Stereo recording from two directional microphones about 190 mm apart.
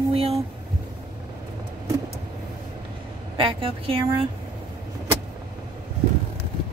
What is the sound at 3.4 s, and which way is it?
Speech, 25° right (ahead or behind).